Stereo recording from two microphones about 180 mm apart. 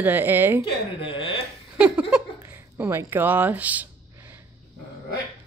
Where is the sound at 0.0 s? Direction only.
10° right (ahead or behind).